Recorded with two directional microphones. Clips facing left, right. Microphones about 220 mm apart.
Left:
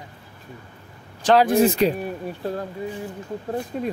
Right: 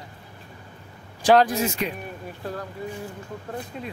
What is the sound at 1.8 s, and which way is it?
Speech, 35° left (ahead or behind).